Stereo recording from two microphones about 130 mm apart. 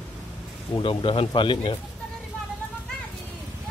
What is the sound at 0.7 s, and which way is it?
Speech, 40° left (ahead or behind).